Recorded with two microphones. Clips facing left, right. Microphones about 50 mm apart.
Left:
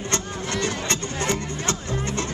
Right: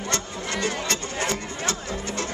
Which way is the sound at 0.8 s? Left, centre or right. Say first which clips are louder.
Left 1 dB; left.